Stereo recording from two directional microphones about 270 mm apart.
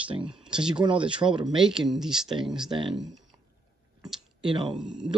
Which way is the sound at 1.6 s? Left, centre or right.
Centre.